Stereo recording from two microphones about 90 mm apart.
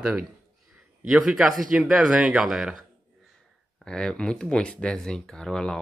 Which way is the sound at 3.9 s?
10° left (ahead or behind).